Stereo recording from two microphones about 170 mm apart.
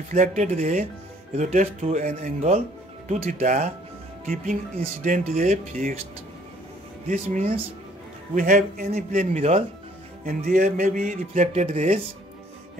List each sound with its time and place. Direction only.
0.1 s speech: 45° right (ahead or behind)
5.0 s speech: 50° right (ahead or behind)
7.1 s speech: 40° right (ahead or behind)
10.2 s speech: 55° right (ahead or behind)